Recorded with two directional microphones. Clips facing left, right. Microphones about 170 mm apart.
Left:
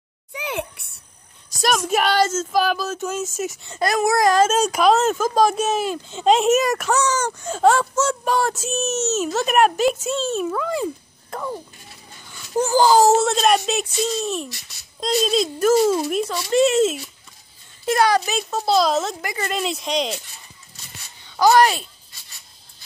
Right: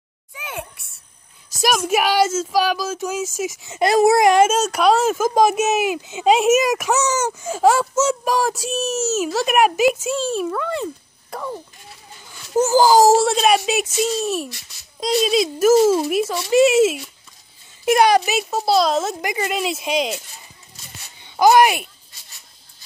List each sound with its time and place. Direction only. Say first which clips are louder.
0.3 s speech: left 5 dB; 75° left (ahead or behind)
1.6 s speech: right 1 dB; 5° right (ahead or behind)
3.8 s speech: right 4 dB; 25° right (ahead or behind)
4.7 s a child's voice: right 1 dB; centre (ahead or behind)
17.8 s a child's voice: right 3 dB; 15° right (ahead or behind)
18.7 s speech: right 1 dB; centre (ahead or behind)
21.4 s a child's voice: right 2 dB; 15° right (ahead or behind)